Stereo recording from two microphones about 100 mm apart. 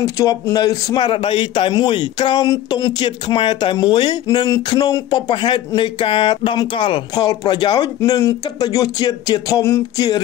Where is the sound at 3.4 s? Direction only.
55° left (ahead or behind).